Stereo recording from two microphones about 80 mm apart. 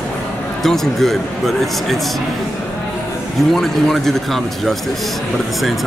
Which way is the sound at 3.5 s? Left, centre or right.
Centre.